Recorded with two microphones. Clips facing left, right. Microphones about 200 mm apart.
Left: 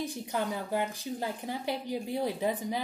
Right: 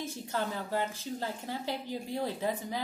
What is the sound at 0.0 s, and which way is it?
A woman's voice, 15° left (ahead or behind).